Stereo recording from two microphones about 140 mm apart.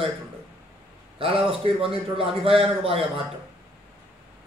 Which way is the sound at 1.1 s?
40° right (ahead or behind).